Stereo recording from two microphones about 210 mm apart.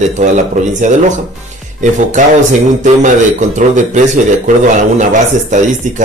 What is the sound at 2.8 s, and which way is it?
Speech, 35° right (ahead or behind).